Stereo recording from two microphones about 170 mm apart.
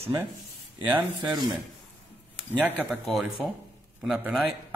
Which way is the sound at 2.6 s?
10° right (ahead or behind).